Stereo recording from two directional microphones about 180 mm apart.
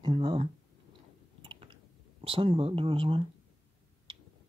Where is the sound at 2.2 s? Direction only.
30° right (ahead or behind).